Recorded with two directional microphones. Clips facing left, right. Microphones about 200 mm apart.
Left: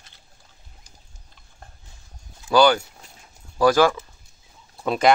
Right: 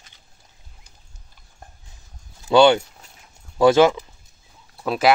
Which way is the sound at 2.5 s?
25° right (ahead or behind).